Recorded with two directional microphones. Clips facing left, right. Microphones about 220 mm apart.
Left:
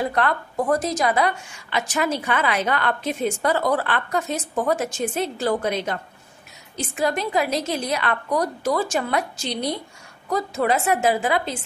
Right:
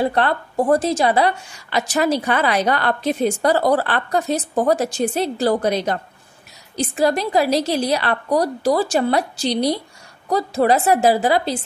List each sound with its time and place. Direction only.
0.0 s a woman's voice: 30° right (ahead or behind)